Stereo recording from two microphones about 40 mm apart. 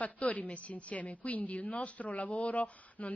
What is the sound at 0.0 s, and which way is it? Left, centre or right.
A woman's voice, left.